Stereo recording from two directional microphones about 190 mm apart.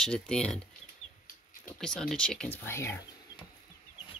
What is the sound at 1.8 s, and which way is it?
Speech, 5° left (ahead or behind).